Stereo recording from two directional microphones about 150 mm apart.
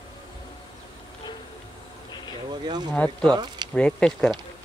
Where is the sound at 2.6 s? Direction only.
30° right (ahead or behind).